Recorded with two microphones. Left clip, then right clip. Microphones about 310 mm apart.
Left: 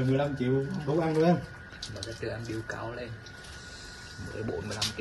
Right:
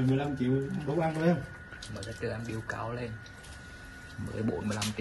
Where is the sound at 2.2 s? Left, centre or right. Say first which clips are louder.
Even; right.